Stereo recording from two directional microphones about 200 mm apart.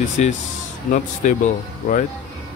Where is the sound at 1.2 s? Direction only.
40° left (ahead or behind).